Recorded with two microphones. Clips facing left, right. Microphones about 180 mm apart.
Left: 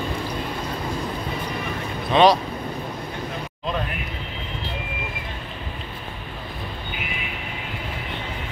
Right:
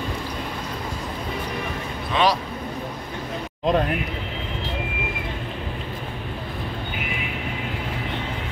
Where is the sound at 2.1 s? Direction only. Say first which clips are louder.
Left 5 dB; 25° left (ahead or behind).